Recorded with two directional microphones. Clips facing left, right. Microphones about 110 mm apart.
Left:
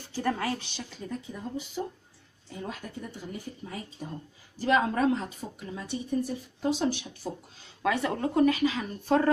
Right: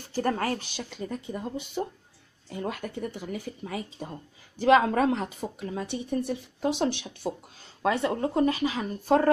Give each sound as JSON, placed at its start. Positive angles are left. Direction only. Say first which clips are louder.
{"t": 0.1, "sound": "a woman's voice", "louder": "right 2 dB", "side_deg": -45}
{"t": 0.8, "sound": "a woman's voice", "louder": "right 3 dB", "side_deg": -65}
{"t": 7.8, "sound": "speech", "louder": "right 2 dB", "side_deg": -30}
{"t": 9.0, "sound": "a woman's voice", "louder": "right 2 dB", "side_deg": -45}